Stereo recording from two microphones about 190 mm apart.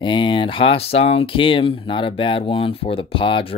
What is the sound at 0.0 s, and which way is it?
Speech, 25° left (ahead or behind).